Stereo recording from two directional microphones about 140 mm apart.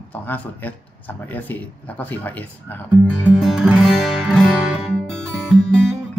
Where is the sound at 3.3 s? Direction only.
5° right (ahead or behind).